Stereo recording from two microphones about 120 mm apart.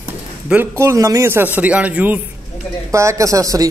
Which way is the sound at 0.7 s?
25° right (ahead or behind).